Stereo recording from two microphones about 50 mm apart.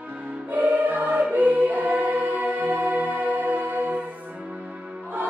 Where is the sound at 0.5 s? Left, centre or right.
Right.